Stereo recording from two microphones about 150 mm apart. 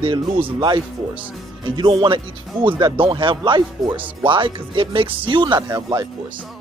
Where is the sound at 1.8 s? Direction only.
35° right (ahead or behind).